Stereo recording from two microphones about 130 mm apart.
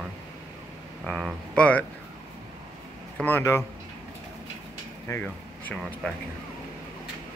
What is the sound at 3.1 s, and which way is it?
Speech, 15° left (ahead or behind).